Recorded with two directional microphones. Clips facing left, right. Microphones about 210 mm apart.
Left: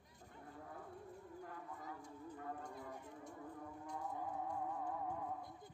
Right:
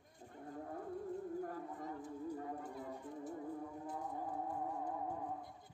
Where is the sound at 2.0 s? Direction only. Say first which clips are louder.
Right 8 dB; 5° right (ahead or behind).